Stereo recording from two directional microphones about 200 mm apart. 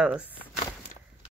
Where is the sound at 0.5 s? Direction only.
35° left (ahead or behind).